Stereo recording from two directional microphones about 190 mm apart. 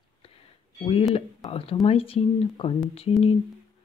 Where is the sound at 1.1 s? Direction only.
30° left (ahead or behind).